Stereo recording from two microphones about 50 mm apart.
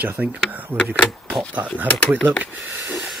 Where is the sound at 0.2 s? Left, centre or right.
Right.